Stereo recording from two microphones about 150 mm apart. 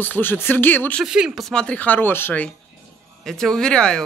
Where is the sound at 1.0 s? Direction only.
5° right (ahead or behind).